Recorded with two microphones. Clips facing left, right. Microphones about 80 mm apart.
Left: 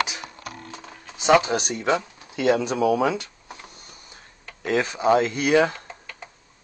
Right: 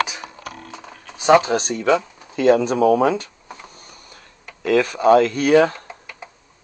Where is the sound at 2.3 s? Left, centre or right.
Right.